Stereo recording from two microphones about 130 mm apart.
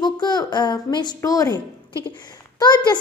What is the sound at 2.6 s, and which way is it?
Speech, 30° left (ahead or behind).